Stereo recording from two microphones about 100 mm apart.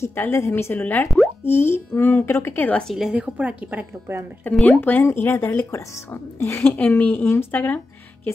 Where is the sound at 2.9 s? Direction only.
5° right (ahead or behind).